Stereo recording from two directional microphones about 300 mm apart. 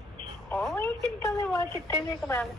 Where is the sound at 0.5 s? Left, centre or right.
Centre.